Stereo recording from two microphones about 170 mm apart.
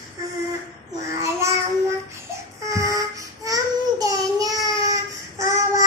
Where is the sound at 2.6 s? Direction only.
20° right (ahead or behind).